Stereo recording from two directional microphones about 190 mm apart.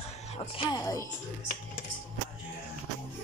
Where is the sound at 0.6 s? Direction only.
20° left (ahead or behind).